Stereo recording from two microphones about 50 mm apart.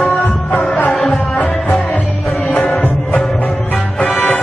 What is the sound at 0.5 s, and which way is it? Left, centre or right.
Music, left.